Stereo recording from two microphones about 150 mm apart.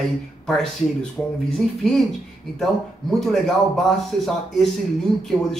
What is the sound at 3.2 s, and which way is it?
Speech, centre (ahead or behind).